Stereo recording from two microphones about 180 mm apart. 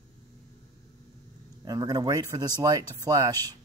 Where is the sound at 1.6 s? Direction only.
20° right (ahead or behind).